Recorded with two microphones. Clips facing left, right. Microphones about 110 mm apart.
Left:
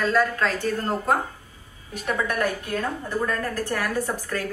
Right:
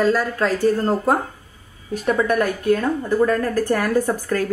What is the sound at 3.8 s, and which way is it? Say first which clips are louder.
Speech: right 7 dB; 45° right (ahead or behind).